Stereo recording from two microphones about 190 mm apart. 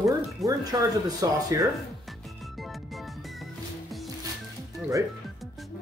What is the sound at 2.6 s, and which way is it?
Music, centre (ahead or behind).